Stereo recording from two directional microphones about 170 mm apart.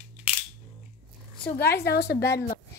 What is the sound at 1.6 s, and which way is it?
Speech, 65° left (ahead or behind).